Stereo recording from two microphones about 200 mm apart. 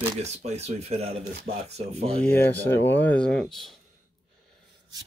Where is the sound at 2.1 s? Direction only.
10° left (ahead or behind).